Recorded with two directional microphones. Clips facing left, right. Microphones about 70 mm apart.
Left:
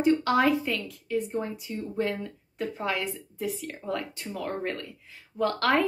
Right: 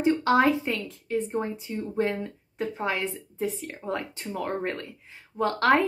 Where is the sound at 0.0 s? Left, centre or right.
Right.